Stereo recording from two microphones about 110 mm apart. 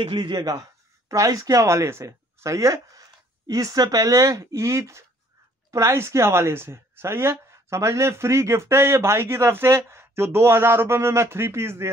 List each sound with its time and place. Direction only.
0.0 s speech: 50° right (ahead or behind); by 11.9 s 25° right (ahead or behind)